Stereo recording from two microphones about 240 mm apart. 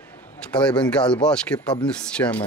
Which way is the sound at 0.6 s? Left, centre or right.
Centre.